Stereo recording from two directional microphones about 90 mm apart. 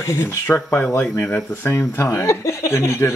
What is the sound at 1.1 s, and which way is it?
Speech, 20° left (ahead or behind).